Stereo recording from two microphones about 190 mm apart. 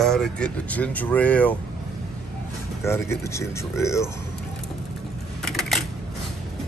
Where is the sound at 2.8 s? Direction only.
15° left (ahead or behind).